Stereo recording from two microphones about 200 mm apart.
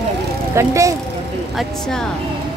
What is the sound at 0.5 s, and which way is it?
Speech, 15° right (ahead or behind).